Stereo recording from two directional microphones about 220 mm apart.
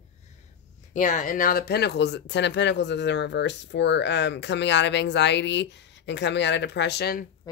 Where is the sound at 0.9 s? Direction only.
35° left (ahead or behind).